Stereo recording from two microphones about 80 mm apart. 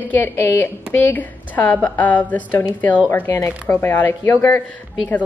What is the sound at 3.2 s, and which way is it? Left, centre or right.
Speech, left.